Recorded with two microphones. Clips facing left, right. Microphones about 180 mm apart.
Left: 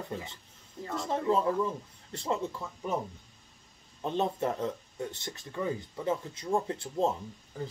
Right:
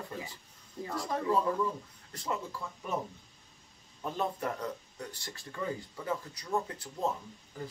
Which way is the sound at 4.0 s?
25° left (ahead or behind).